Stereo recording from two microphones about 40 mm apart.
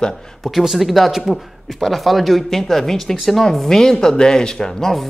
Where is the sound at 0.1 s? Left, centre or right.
Centre.